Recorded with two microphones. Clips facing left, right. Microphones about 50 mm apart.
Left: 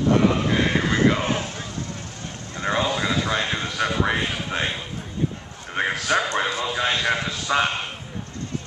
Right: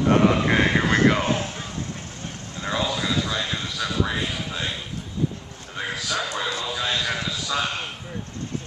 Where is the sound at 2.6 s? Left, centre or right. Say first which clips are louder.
Left 3 dB; left.